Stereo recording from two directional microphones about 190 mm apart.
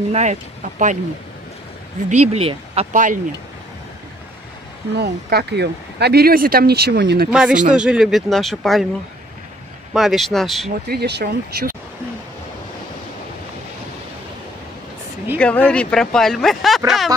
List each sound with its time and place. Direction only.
0.1 s speech: 40° right (ahead or behind)
2.0 s speech: 35° right (ahead or behind)
4.9 s speech: 55° right (ahead or behind)
7.2 s speech: 5° right (ahead or behind)
9.9 s speech: centre (ahead or behind)
10.9 s speech: 60° right (ahead or behind)
15.3 s speech: 5° left (ahead or behind)